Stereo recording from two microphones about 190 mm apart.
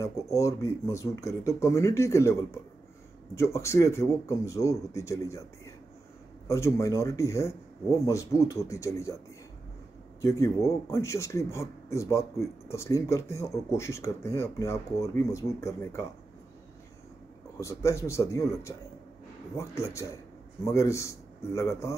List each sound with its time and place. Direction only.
0.0 s speech: 15° left (ahead or behind)
6.4 s speech: 15° left (ahead or behind)
10.2 s speech: 15° left (ahead or behind)
17.6 s speech: 15° left (ahead or behind)
19.8 s speech: 15° left (ahead or behind)